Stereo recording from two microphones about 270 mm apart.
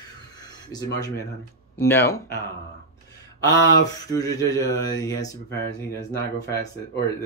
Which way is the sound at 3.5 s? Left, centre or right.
Left.